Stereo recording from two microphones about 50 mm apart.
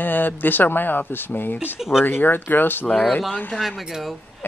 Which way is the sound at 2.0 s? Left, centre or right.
Left.